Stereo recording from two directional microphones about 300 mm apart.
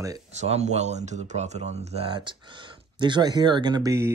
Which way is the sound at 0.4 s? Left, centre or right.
Right.